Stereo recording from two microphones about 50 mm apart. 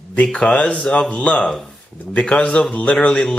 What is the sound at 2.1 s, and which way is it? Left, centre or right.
Speech, left.